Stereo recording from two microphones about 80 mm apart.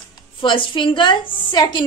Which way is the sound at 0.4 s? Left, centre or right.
Left.